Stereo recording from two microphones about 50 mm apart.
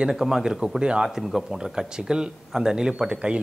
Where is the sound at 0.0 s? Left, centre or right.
Centre.